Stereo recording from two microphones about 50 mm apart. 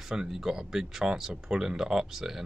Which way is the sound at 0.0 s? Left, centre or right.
Centre.